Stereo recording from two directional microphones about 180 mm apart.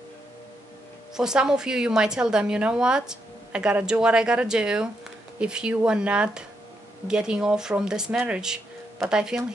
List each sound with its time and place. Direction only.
1.1 s a woman's voice: 5° right (ahead or behind)